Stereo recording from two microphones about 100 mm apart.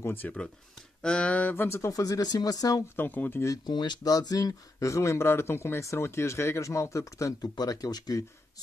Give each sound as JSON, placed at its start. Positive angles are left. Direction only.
{"t": 0.0, "sound": "speech", "side_deg": 20}
{"t": 3.0, "sound": "speech", "side_deg": 20}
{"t": 3.6, "sound": "speech", "side_deg": 45}